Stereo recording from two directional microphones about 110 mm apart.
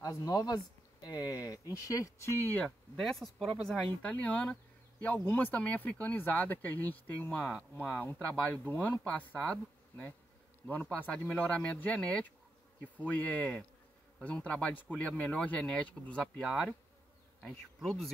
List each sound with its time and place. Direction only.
0.0 s speech: 30° left (ahead or behind)
2.5 s speech: 5° left (ahead or behind)
17.4 s bee: centre (ahead or behind)